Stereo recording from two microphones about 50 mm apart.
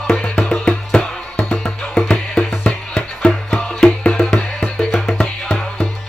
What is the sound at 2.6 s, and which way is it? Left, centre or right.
Music, left.